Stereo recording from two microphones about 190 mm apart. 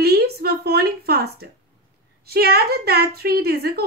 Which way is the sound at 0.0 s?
55° right (ahead or behind).